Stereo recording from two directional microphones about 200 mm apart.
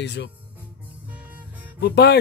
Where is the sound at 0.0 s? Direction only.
60° left (ahead or behind).